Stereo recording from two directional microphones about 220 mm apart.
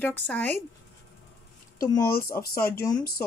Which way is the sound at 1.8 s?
15° left (ahead or behind).